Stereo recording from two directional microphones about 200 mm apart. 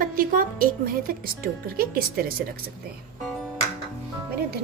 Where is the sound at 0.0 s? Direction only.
45° right (ahead or behind).